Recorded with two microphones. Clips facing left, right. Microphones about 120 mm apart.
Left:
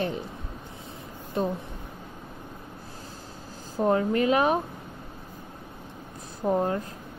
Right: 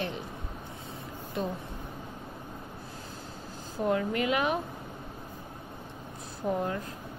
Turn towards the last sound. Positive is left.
turn(degrees=35)  # may be behind; listen again after turning